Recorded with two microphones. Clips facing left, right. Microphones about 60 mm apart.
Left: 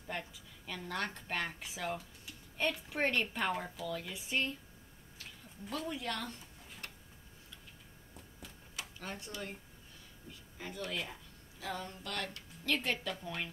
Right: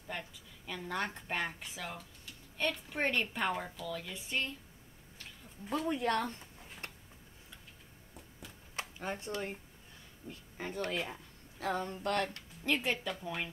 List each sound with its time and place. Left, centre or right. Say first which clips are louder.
0.3 s speech: right 1 dB; centre
1.6 s a woman's voice: left 4 dB; centre
5.7 s speech: right 5 dB; right
5.9 s speech: right 7 dB; right
6.8 s a sound: right 2 dB; right
8.9 s speech: right 7 dB; right
12.6 s speech: right 2 dB; centre